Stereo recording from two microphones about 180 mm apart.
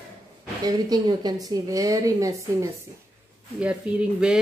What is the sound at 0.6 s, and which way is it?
A woman's voice, 20° right (ahead or behind).